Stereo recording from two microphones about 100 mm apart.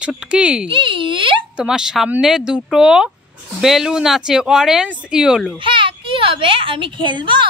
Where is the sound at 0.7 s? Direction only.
60° right (ahead or behind).